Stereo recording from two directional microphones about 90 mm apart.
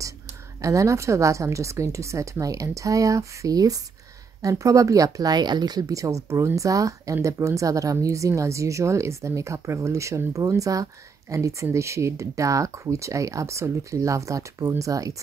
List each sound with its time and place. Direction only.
0.6 s speech: 35° right (ahead or behind)